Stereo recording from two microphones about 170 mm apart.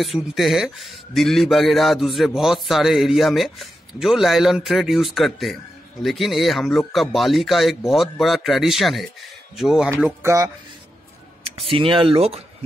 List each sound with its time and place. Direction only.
0.0 s a man's voice: centre (ahead or behind)
9.8 s speech: 10° right (ahead or behind)
11.7 s speech: 30° right (ahead or behind)